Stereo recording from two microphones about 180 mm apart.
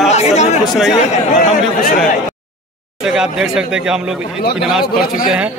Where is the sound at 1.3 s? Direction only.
55° left (ahead or behind).